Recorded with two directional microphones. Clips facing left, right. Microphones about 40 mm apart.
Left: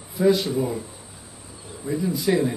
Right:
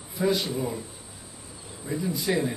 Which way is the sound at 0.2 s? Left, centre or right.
Centre.